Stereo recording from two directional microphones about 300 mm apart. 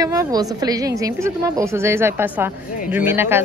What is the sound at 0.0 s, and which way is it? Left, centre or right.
A woman's voice, centre.